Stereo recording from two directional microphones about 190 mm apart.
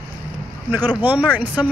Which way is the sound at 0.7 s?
10° right (ahead or behind).